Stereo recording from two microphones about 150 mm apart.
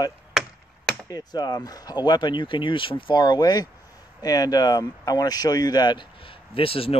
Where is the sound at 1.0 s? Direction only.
25° left (ahead or behind).